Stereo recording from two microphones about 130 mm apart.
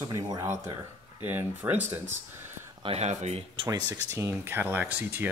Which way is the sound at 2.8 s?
50° right (ahead or behind).